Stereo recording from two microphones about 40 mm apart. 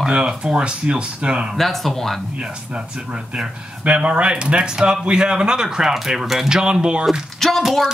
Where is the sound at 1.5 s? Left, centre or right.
Centre.